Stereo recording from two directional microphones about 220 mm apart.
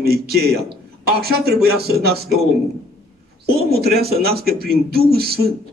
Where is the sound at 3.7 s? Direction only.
45° right (ahead or behind).